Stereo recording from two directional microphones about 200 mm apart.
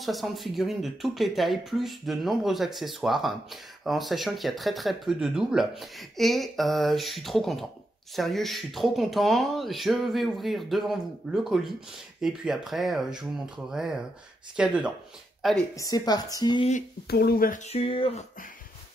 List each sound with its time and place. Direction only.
0.0 s speech: centre (ahead or behind)
15.7 s speech: 15° left (ahead or behind)
16.7 s speech: 50° left (ahead or behind); by 18.2 s 25° left (ahead or behind)